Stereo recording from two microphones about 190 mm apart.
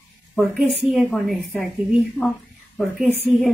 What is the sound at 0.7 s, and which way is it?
Speech, centre (ahead or behind).